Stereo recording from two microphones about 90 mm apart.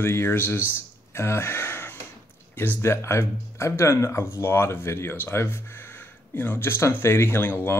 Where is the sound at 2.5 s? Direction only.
25° left (ahead or behind).